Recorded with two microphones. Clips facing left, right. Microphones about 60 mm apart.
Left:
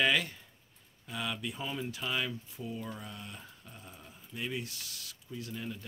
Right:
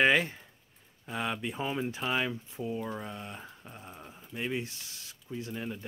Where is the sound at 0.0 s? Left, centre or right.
Right.